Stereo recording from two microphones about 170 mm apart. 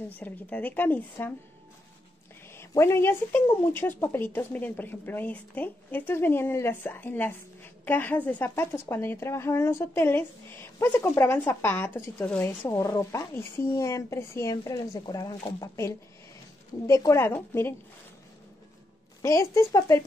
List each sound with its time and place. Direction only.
0.1 s speech: 10° left (ahead or behind)
2.5 s speech: 15° left (ahead or behind)
19.2 s speech: 15° left (ahead or behind)